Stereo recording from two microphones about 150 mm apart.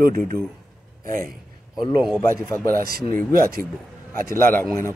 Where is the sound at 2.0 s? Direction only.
Centre (ahead or behind).